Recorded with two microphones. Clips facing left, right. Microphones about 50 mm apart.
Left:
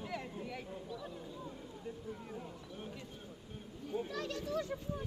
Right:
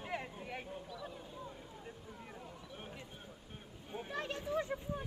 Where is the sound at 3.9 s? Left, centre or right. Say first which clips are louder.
Left 2 dB; right.